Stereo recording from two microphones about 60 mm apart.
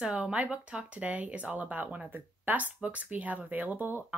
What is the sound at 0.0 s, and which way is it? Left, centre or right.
Speech, centre.